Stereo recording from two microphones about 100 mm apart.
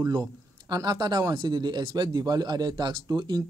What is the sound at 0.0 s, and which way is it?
A man's voice, 40° right (ahead or behind).